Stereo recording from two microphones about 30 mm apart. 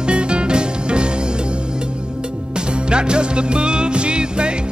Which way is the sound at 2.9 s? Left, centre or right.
Right.